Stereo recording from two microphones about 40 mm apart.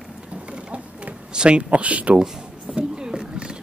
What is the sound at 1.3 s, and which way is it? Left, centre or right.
Speech, right.